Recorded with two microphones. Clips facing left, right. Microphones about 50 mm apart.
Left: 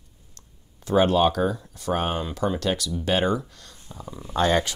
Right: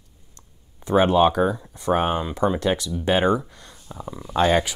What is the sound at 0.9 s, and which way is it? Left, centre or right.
Speech, right.